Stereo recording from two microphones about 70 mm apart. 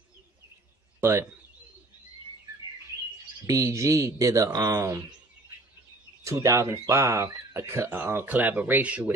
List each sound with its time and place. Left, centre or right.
3.4 s speech: right
6.2 s speech: right
7.6 s speech: right